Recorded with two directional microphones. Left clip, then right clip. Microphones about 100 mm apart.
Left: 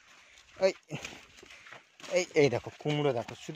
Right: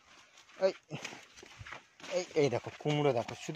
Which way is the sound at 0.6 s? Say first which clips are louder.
Left 3 dB; 45° left (ahead or behind).